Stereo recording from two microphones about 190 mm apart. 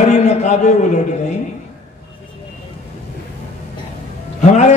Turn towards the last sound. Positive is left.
turn(degrees=35)  # may be behind; listen again after turning